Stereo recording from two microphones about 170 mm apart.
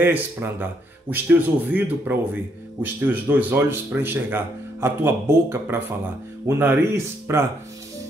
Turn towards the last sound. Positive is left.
turn(degrees=-15)  # may be behind; listen again after turning